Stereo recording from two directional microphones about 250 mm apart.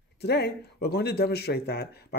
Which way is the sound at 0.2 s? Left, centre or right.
Left.